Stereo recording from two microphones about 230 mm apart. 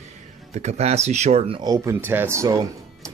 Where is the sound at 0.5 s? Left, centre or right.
Right.